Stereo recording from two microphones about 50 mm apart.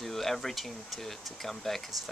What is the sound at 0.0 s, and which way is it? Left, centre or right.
Speech, centre.